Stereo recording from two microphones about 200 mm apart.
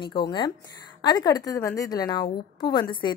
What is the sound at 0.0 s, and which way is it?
A woman's voice, 25° left (ahead or behind).